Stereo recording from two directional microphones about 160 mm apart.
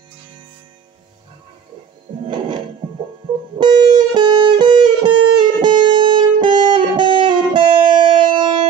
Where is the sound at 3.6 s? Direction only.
30° right (ahead or behind).